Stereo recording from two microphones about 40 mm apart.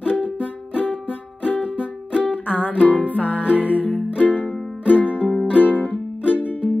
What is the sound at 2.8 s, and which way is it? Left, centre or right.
Music, left.